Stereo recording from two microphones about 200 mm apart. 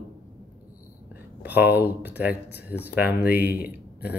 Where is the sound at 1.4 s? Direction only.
10° right (ahead or behind).